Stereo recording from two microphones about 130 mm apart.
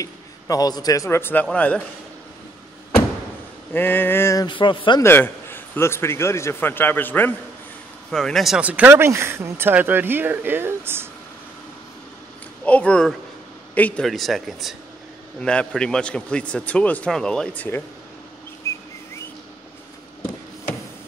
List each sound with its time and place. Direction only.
0.0 s a man's voice: 30° left (ahead or behind); by 1.8 s 10° left (ahead or behind)
3.7 s speech: 15° left (ahead or behind)
4.5 s speech: 40° left (ahead or behind)
5.0 s speech: 15° left (ahead or behind)
8.1 s speech: 5° left (ahead or behind); by 11.1 s 15° right (ahead or behind)
12.6 s speech: 10° left (ahead or behind)
14.0 s speech: centre (ahead or behind)
18.6 s whistling: 25° left (ahead or behind)